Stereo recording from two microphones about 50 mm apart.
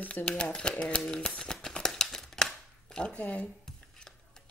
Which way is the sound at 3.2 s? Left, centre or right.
Left.